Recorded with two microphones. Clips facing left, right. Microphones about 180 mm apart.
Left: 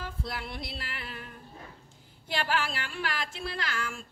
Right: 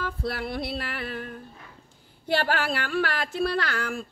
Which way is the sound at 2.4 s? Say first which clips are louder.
Right 5 dB; 65° right (ahead or behind).